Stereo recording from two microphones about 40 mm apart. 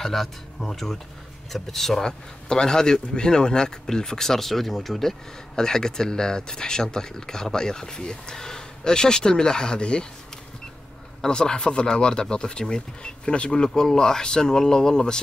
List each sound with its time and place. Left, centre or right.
0.0 s speech: centre; by 10.0 s left
11.1 s speech: centre